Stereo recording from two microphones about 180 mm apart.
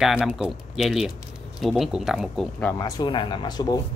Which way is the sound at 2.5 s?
15° left (ahead or behind).